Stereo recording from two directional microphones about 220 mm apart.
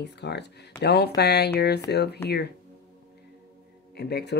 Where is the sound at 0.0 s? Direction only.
50° left (ahead or behind).